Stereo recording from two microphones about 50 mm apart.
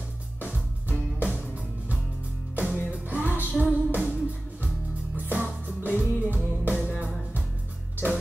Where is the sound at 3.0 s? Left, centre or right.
Right.